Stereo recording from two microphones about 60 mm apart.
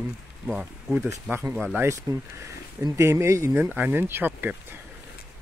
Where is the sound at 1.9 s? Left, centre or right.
Right.